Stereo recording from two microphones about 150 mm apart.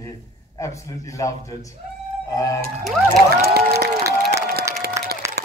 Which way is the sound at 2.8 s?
Centre (ahead or behind).